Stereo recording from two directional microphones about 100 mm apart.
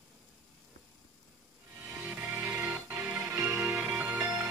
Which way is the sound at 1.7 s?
15° right (ahead or behind).